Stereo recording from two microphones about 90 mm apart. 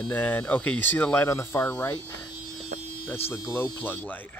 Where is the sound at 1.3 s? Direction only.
30° left (ahead or behind).